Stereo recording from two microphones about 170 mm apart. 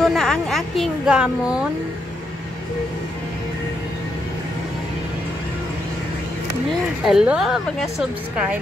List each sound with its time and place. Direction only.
0.0 s speech: centre (ahead or behind)
7.1 s speech: 5° right (ahead or behind)